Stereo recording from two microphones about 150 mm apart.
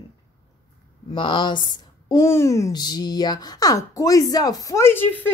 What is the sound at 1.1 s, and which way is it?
A woman's voice, 35° left (ahead or behind).